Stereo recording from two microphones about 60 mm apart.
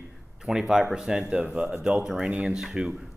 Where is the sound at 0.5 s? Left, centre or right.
Centre.